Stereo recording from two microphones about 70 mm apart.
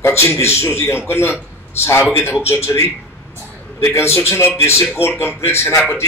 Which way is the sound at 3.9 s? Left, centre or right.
Left.